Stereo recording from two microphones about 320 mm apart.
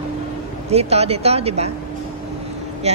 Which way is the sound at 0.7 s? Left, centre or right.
Centre.